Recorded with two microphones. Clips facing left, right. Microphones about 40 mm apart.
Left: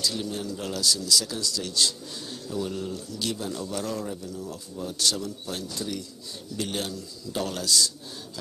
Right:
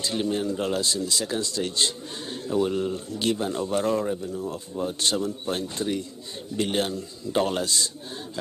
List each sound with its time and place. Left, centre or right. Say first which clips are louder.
0.0 s speech: right 4 dB; right